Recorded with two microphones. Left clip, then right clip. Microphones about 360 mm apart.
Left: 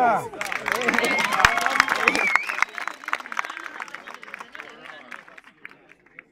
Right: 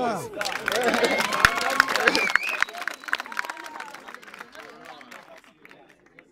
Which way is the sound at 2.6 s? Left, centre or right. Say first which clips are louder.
Left 1 dB; centre.